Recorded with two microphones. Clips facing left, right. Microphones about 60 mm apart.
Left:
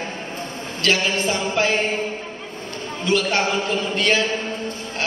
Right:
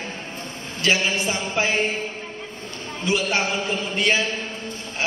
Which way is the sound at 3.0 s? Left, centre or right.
Centre.